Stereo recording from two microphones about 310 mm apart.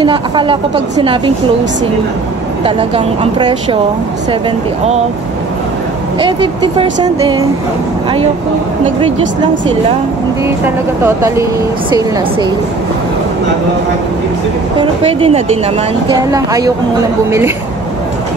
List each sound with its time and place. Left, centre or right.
0.0 s speech: centre
6.1 s speech: centre
11.1 s speech: centre
14.8 s speech: centre